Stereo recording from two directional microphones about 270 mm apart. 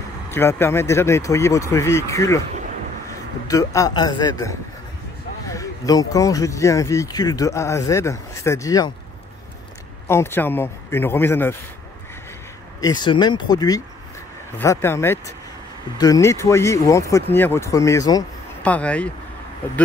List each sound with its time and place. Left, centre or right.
0.3 s speech: centre
3.4 s speech: centre
10.0 s speech: centre
12.8 s speech: centre